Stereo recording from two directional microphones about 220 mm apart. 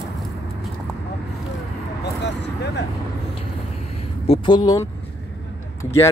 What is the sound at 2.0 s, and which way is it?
Vehicle, 50° left (ahead or behind).